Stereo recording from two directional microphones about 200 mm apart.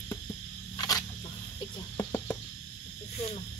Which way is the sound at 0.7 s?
20° left (ahead or behind).